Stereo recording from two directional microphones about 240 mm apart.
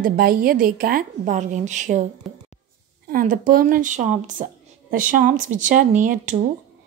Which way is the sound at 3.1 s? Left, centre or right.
Right.